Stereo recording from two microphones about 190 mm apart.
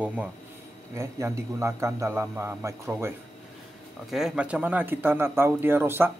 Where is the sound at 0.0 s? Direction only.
10° right (ahead or behind).